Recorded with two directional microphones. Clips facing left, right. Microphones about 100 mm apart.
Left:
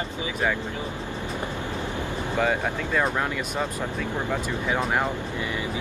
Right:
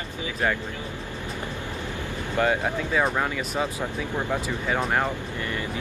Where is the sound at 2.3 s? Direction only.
Centre (ahead or behind).